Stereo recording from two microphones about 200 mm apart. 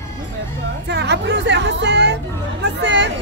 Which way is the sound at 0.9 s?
60° right (ahead or behind).